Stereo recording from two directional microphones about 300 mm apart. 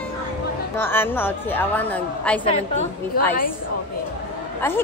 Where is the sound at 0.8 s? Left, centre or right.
Centre.